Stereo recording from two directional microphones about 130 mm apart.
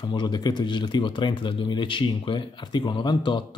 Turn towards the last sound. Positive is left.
turn(degrees=35)  # may be behind; listen again after turning